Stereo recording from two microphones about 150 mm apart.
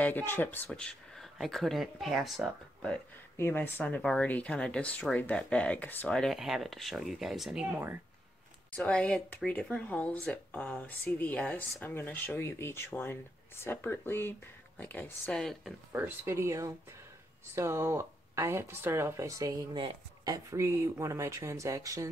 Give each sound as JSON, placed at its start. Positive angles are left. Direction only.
{"t": 0.0, "sound": "speech", "side_deg": 15}
{"t": 3.3, "sound": "speech", "side_deg": 15}
{"t": 8.7, "sound": "speech", "side_deg": 5}
{"t": 15.9, "sound": "speech", "side_deg": -15}